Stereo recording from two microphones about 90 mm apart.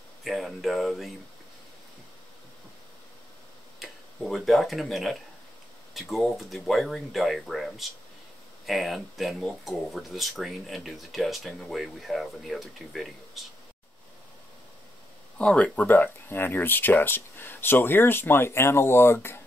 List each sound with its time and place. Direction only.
0.2 s speech: centre (ahead or behind)
3.8 s speech: centre (ahead or behind)
15.3 s speech: 15° left (ahead or behind)